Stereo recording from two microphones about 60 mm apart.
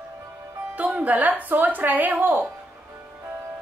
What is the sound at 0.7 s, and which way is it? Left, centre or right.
Speech, right.